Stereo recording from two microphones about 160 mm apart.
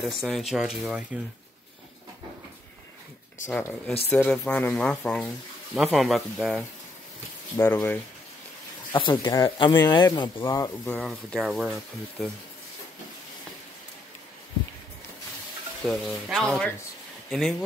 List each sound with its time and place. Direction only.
0.0 s speech: centre (ahead or behind)
3.4 s speech: 15° left (ahead or behind)
7.5 s speech: 15° left (ahead or behind)
8.9 s speech: 30° left (ahead or behind)
10.9 s speech: 5° left (ahead or behind)
15.8 s speech: centre (ahead or behind)